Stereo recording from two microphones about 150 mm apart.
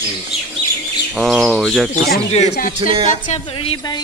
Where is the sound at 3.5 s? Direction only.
40° left (ahead or behind).